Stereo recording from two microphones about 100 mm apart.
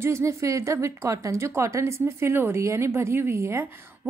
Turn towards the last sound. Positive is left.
turn(degrees=-25)  # may be behind; listen again after turning